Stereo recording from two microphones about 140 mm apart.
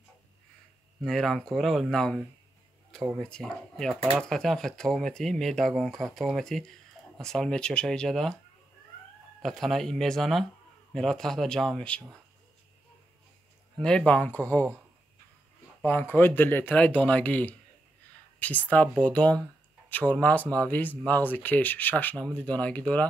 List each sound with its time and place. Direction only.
1.0 s speech: centre (ahead or behind)
9.4 s speech: centre (ahead or behind)
13.7 s speech: 5° left (ahead or behind)
15.8 s speech: 15° left (ahead or behind)